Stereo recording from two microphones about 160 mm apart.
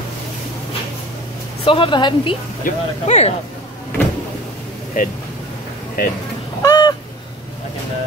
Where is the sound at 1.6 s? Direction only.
35° left (ahead or behind).